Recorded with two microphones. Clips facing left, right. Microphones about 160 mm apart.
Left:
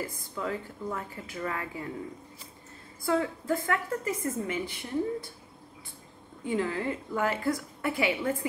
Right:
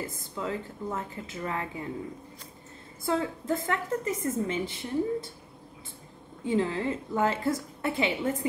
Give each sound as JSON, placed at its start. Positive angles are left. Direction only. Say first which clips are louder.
{"t": 0.0, "sound": "a woman's voice", "louder": "even", "side_deg": -20}
{"t": 3.0, "sound": "a woman's voice", "louder": "left 1 dB", "side_deg": -25}
{"t": 6.4, "sound": "a woman's voice", "louder": "right 2 dB", "side_deg": -25}